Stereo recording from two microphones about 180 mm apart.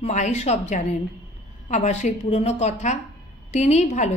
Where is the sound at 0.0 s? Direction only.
40° left (ahead or behind).